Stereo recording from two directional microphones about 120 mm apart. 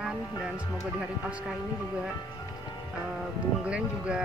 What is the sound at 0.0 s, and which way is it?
Music, 5° right (ahead or behind).